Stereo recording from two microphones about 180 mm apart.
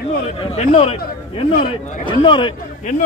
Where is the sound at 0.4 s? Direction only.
30° left (ahead or behind).